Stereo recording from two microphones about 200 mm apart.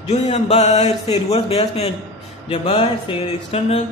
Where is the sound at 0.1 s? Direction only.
35° left (ahead or behind).